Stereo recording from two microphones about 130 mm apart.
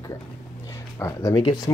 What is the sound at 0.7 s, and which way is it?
Speech, 25° left (ahead or behind).